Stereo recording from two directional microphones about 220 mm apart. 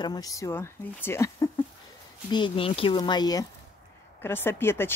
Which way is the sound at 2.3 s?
25° left (ahead or behind).